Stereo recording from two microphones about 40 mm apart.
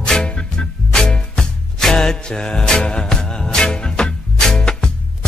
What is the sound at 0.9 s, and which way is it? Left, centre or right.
Music, centre.